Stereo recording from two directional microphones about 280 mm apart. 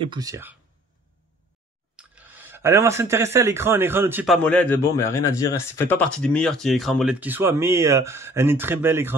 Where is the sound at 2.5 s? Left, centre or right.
Centre.